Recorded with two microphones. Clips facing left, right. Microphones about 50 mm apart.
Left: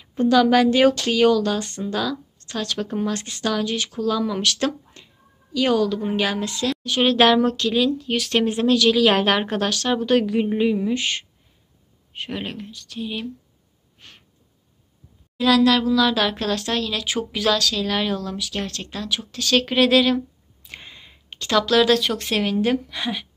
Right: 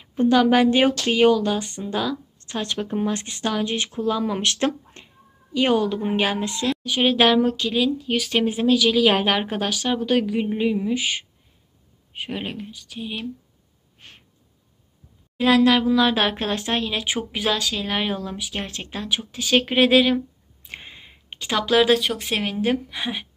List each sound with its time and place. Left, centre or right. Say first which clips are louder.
0.1 s speech: left 1 dB; right
6.8 s speech: left 2 dB; centre
15.3 s speech: even; right